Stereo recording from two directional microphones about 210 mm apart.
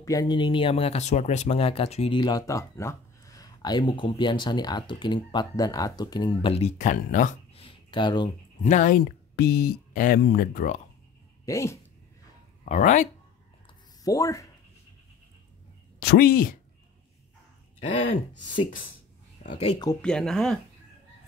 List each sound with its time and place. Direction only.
0.0 s speech: 15° left (ahead or behind); by 7.6 s 40° left (ahead or behind)
7.6 s a sound: 25° left (ahead or behind)
8.6 s speech: 35° left (ahead or behind)
11.4 s speech: 15° left (ahead or behind)
12.6 s speech: 35° left (ahead or behind)
14.0 s speech: 15° left (ahead or behind)
16.0 s speech: 50° left (ahead or behind)
17.7 s speech: 25° left (ahead or behind)
19.6 s speech: 25° left (ahead or behind)
19.9 s speech: 5° left (ahead or behind)